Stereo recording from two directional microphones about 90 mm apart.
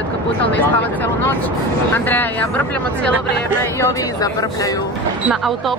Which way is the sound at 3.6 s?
35° left (ahead or behind).